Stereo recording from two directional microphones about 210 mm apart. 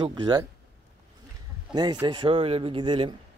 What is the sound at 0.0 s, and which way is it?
Speech, 20° right (ahead or behind).